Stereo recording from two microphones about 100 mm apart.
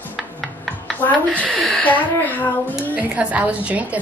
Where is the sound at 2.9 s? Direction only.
15° right (ahead or behind).